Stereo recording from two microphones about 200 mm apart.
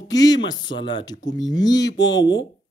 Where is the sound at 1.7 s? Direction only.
60° left (ahead or behind).